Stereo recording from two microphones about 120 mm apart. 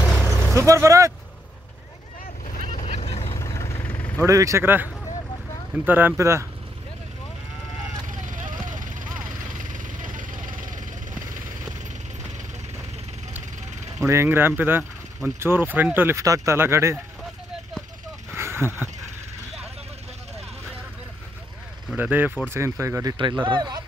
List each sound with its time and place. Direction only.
0.0 s vehicle: 5° left (ahead or behind)
0.6 s speech: 25° right (ahead or behind)
2.4 s boat: 75° left (ahead or behind)
3.3 s vehicle: 25° left (ahead or behind)
4.3 s speech: 25° right (ahead or behind)
5.9 s speech: 15° right (ahead or behind)
8.1 s vehicle: 90° right
13.9 s speech: 25° right (ahead or behind)
18.3 s a sound: 20° right (ahead or behind)
21.9 s speech: 15° right (ahead or behind)
23.1 s speech: 40° right (ahead or behind)